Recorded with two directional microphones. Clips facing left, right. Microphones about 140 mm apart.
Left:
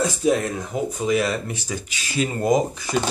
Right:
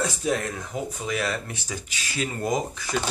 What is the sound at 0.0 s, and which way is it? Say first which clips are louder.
Speech: left 6 dB; 15° left (ahead or behind).